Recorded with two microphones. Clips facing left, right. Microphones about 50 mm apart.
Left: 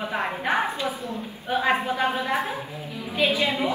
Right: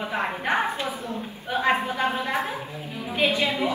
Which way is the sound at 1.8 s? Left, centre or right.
Centre.